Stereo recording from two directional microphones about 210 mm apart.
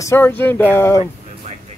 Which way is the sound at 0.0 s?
10° left (ahead or behind).